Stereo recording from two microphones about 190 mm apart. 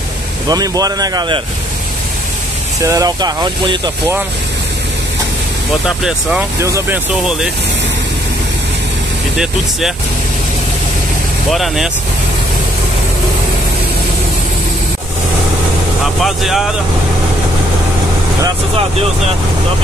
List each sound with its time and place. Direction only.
0.5 s speech: 20° right (ahead or behind)
2.8 s speech: 15° right (ahead or behind)
6.6 s speech: 15° right (ahead or behind)
7.2 s speech: 5° right (ahead or behind)
9.4 s speech: centre (ahead or behind)
11.5 s speech: centre (ahead or behind)
16.2 s speech: centre (ahead or behind)